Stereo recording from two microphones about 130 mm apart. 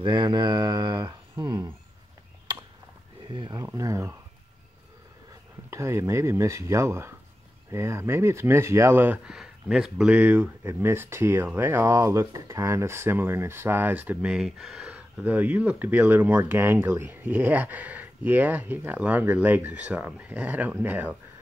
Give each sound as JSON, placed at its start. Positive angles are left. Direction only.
{"t": 0.0, "sound": "speech", "side_deg": -35}
{"t": 3.3, "sound": "speech", "side_deg": -35}
{"t": 3.6, "sound": "speech", "side_deg": -25}
{"t": 5.7, "sound": "speech", "side_deg": -20}